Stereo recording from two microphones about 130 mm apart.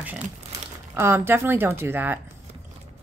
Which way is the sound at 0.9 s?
15° right (ahead or behind).